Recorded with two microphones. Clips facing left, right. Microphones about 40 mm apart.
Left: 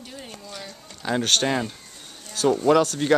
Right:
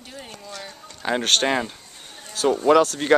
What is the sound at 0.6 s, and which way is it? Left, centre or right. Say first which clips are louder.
Speech: right 3 dB; right.